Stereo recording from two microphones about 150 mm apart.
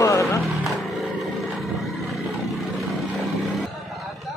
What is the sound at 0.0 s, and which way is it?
Vehicle, 20° left (ahead or behind).